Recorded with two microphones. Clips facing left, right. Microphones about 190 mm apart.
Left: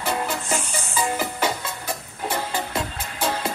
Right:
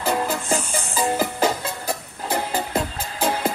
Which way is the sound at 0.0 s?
35° right (ahead or behind).